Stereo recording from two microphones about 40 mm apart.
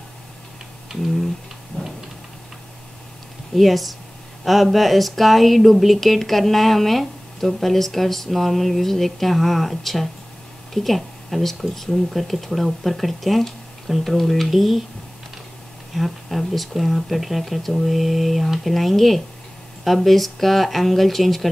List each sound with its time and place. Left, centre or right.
1.7 s a sound: left
3.5 s speech: centre
15.9 s speech: centre